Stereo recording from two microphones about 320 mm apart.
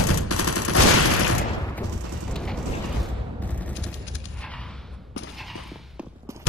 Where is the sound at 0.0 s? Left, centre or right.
Left.